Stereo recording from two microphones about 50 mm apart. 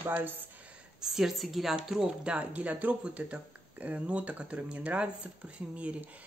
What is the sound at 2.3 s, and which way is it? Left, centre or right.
Speech, right.